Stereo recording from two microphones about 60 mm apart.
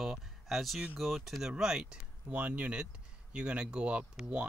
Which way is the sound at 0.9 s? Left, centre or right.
Centre.